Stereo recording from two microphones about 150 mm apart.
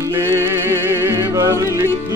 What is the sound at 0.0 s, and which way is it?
Music, 20° right (ahead or behind).